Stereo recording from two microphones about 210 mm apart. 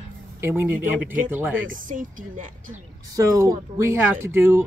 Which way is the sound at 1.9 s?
40° right (ahead or behind).